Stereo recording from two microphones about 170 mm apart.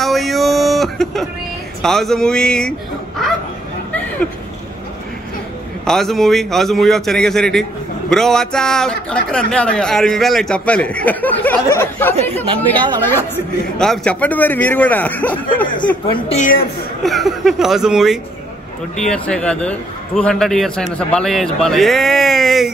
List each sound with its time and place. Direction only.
0.0 s a sound: centre (ahead or behind)
1.8 s a man's voice: centre (ahead or behind)
5.9 s a man's voice: centre (ahead or behind)
16.1 s a woman's voice: 30° left (ahead or behind)
16.3 s a woman's voice: 50° left (ahead or behind)
17.0 s a man's voice: centre (ahead or behind)